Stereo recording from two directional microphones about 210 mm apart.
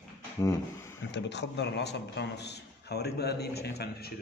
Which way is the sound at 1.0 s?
55° left (ahead or behind).